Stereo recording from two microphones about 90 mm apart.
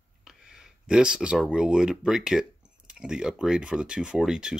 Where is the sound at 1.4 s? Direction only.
10° right (ahead or behind).